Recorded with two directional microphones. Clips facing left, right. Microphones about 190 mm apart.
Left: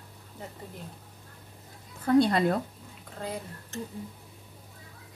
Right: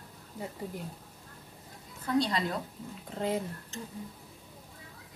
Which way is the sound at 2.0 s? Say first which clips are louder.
Left 7 dB; 55° left (ahead or behind).